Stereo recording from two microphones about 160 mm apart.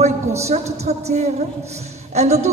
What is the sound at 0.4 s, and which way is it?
A woman's voice, 40° right (ahead or behind).